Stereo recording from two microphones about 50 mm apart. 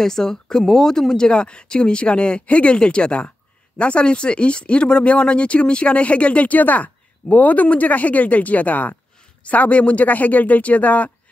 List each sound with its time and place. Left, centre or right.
0.0 s speech: centre; by 11.1 s left